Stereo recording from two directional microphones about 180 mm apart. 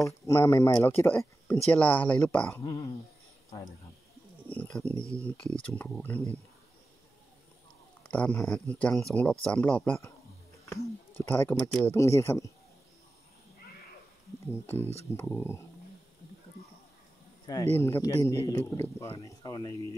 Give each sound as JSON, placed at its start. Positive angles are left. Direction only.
{"t": 0.0, "sound": "speech", "side_deg": 15}
{"t": 2.6, "sound": "speech", "side_deg": 20}
{"t": 4.5, "sound": "speech", "side_deg": 5}
{"t": 4.9, "sound": "speech", "side_deg": -15}
{"t": 5.2, "sound": "speech", "side_deg": 5}
{"t": 8.0, "sound": "speech", "side_deg": 5}
{"t": 14.4, "sound": "speech", "side_deg": 15}
{"t": 17.5, "sound": "speech", "side_deg": 15}